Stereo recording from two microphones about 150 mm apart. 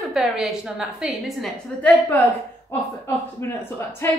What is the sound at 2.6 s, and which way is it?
Speech, 15° left (ahead or behind).